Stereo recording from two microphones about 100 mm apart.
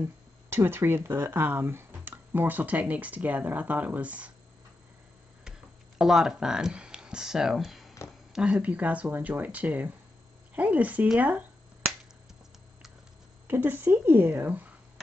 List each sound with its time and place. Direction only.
0.5 s speech: 25° right (ahead or behind)
5.9 s speech: 5° right (ahead or behind)
13.5 s speech: 20° right (ahead or behind)